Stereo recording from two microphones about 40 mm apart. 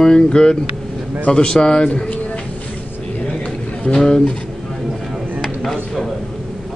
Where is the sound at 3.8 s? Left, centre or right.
Centre.